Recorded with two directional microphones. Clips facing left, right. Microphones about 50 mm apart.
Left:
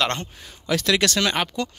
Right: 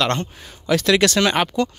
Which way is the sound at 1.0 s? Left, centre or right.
Right.